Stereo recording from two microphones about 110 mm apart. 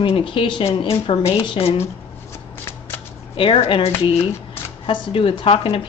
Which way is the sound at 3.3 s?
55° left (ahead or behind).